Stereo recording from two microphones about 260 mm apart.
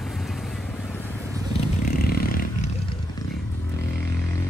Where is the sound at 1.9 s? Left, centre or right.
Left.